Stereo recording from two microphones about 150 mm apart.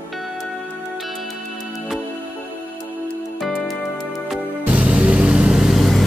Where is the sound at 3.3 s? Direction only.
Centre (ahead or behind).